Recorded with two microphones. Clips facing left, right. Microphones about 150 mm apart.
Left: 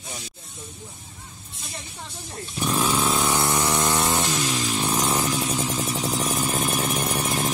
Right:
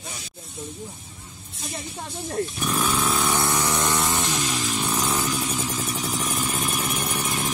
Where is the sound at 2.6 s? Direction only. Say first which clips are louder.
Left 7 dB; 25° left (ahead or behind).